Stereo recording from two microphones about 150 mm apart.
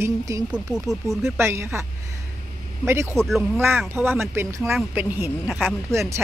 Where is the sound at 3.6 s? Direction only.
15° right (ahead or behind).